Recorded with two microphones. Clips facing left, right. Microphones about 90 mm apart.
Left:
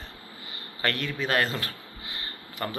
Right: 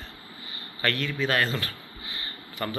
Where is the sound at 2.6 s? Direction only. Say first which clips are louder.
Right 1 dB; 30° left (ahead or behind).